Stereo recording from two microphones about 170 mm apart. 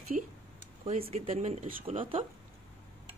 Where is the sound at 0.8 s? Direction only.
35° right (ahead or behind).